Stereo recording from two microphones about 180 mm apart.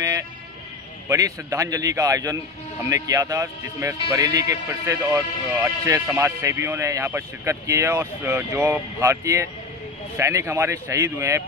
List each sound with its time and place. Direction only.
1.0 s a man's voice: 20° right (ahead or behind)